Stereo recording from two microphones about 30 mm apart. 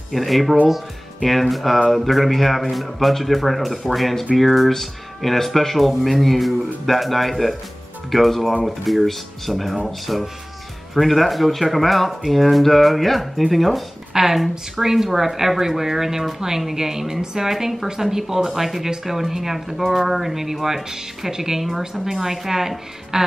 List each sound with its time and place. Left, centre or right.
0.1 s speech: centre
14.1 s a woman's voice: centre
17.5 s speech: centre
21.6 s speech: centre
22.0 s speech: centre